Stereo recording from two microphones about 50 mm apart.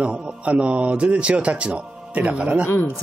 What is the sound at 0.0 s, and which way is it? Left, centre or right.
Speech, right.